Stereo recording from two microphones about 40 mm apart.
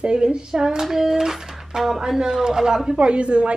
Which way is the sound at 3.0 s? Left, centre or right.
Right.